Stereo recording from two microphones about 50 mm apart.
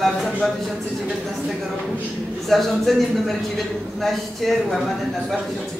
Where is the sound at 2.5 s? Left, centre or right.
Centre.